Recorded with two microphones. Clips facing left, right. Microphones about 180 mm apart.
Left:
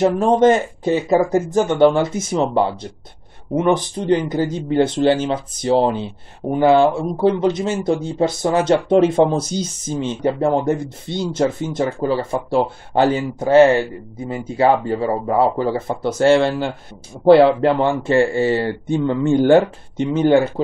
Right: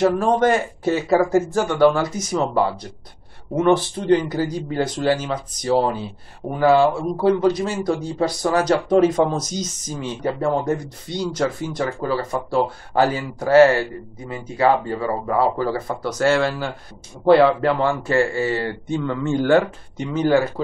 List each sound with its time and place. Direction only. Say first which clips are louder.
0.0 s speech: left 3 dB; 20° left (ahead or behind)